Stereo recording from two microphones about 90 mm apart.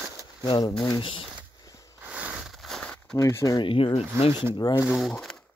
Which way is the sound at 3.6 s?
65° left (ahead or behind).